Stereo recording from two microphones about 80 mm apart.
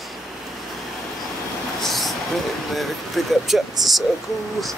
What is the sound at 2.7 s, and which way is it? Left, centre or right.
Speech, centre.